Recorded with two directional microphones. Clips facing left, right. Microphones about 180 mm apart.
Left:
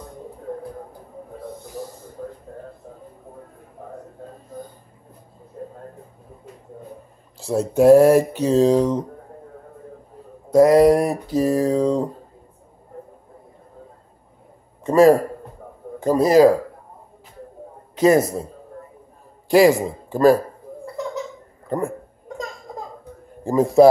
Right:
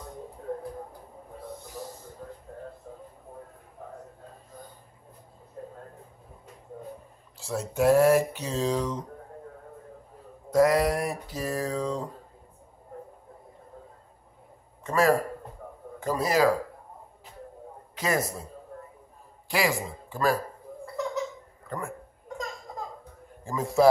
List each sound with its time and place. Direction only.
7.3 s speech: 35° left (ahead or behind)
10.5 s speech: 25° left (ahead or behind)
10.8 s speech: 35° left (ahead or behind)
14.8 s a man's voice: 30° left (ahead or behind)
19.5 s speech: 45° left (ahead or behind)
21.6 s speech: 40° left (ahead or behind)
23.4 s a man's voice: 40° left (ahead or behind)